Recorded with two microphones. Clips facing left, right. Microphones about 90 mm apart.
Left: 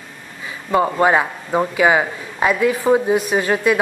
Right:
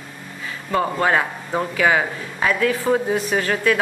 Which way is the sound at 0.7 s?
15° left (ahead or behind).